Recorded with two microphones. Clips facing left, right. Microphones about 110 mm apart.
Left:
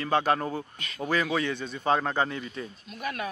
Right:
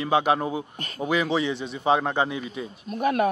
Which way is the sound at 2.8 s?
45° right (ahead or behind).